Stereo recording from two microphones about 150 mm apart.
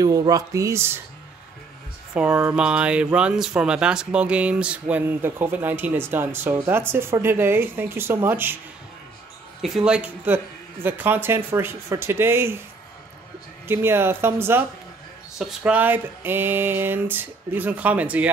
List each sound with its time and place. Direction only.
0.0 s speech: 25° right (ahead or behind)
2.1 s speech: 10° right (ahead or behind)
9.6 s speech: 5° right (ahead or behind)
13.7 s speech: 15° right (ahead or behind)